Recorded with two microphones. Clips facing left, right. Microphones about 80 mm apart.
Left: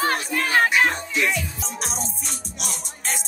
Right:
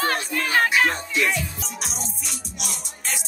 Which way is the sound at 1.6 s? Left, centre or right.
Left.